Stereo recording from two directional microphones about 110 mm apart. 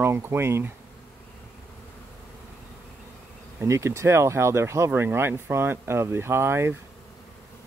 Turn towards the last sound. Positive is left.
turn(degrees=-20)  # may be behind; listen again after turning